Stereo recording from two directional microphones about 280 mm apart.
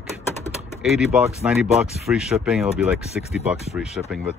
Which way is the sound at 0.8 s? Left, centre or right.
Centre.